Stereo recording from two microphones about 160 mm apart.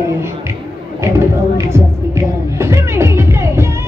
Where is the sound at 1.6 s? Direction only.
20° right (ahead or behind).